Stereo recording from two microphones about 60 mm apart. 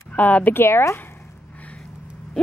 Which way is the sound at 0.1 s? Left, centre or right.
Left.